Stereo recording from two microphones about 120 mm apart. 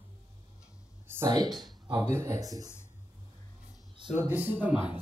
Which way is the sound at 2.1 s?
25° right (ahead or behind).